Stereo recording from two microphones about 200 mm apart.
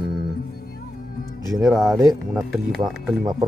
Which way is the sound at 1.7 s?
Centre (ahead or behind).